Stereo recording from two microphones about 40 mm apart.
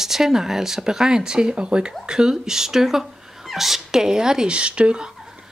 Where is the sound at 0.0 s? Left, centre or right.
Centre.